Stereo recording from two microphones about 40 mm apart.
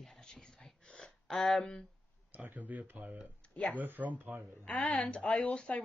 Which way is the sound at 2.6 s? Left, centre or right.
Right.